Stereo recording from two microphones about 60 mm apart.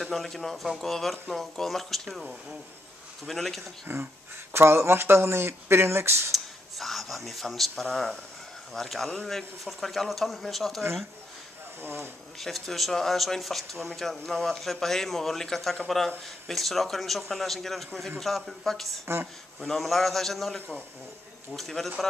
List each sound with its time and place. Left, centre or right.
0.0 s speech: centre
3.3 s speech: centre
3.8 s speech: right
6.3 s speech: centre
11.8 s speech: right
12.4 s speech: centre